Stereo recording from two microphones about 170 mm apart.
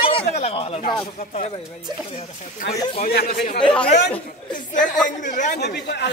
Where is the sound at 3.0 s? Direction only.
65° left (ahead or behind).